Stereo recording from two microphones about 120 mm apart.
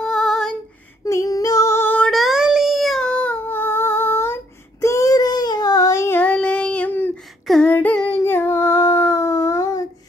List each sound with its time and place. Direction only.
0.0 s female singing: 5° left (ahead or behind)
1.0 s female singing: 30° left (ahead or behind)
2.0 s child singing: centre (ahead or behind); by 7.2 s 15° left (ahead or behind)
7.6 s female singing: 10° left (ahead or behind)
8.2 s a sound: 20° left (ahead or behind)